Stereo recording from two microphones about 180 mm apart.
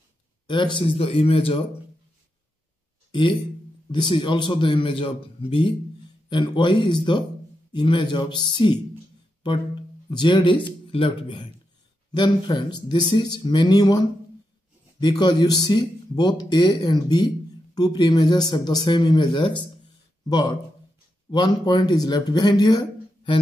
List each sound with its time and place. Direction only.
0.5 s speech: 25° left (ahead or behind)
3.1 s speech: 25° left (ahead or behind)